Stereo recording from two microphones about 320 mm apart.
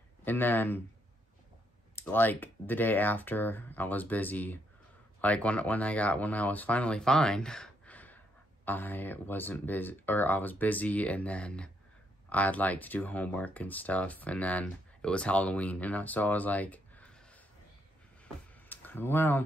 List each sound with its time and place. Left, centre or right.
0.2 s speech: centre
2.0 s speech: centre
18.7 s speech: centre